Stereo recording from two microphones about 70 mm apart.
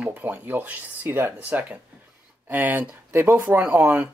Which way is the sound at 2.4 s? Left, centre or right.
Right.